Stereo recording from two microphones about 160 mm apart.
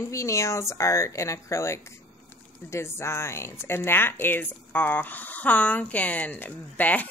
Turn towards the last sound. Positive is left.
turn(degrees=10)  # may be behind; listen again after turning